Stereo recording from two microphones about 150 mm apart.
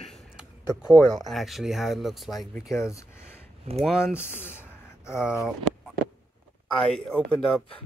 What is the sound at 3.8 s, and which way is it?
Speech, 5° right (ahead or behind).